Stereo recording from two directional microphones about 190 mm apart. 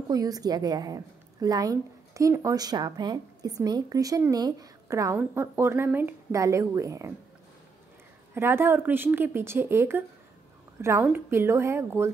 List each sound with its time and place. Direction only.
0.1 s a woman's voice: 20° right (ahead or behind)
8.4 s a woman's voice: 10° right (ahead or behind)